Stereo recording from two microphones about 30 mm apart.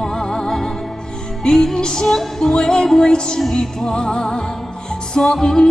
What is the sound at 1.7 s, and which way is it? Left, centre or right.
Music, left.